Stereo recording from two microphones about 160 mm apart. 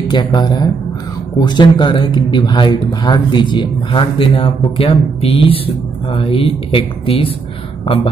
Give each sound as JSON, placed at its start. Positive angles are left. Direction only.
{"t": 0.1, "sound": "speech", "side_deg": 30}